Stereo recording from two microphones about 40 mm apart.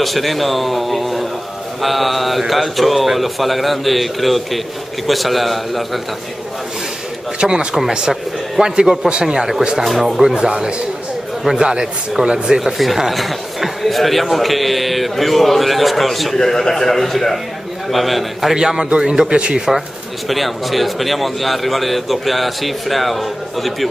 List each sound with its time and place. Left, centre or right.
0.0 s speech: centre
7.3 s speech: centre
10.3 s speech: centre
12.5 s a man's voice: centre
18.5 s speech: centre
20.2 s speech: centre